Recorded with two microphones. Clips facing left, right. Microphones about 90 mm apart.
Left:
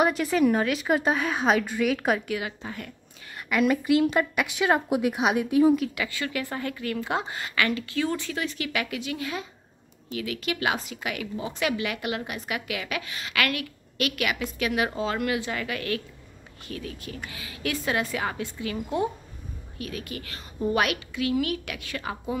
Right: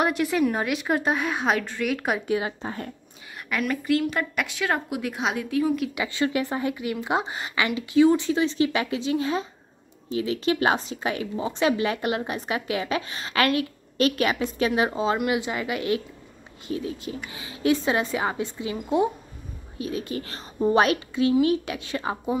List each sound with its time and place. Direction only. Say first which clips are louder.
0.0 s a woman's voice: left 1 dB; centre (ahead or behind)
2.2 s a woman's voice: right 5 dB; 30° right (ahead or behind)
3.6 s a woman's voice: left 3 dB; 10° left (ahead or behind)
5.9 s a woman's voice: right 5 dB; 25° right (ahead or behind)